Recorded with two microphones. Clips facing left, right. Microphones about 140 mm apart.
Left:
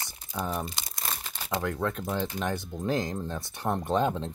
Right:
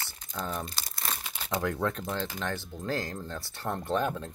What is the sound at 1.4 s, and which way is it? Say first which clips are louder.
Speech: even; centre (ahead or behind).